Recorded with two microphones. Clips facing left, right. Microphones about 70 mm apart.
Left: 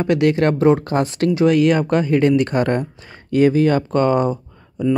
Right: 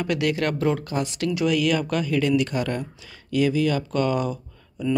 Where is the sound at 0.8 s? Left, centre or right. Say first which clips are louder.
Left 7 dB; left.